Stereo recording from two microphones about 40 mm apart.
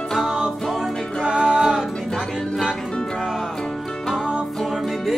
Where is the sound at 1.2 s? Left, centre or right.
Right.